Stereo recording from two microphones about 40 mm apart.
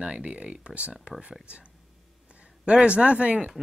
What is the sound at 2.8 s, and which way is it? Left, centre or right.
Speech, right.